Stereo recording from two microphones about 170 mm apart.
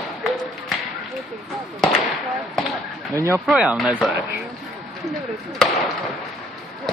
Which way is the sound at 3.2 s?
20° right (ahead or behind).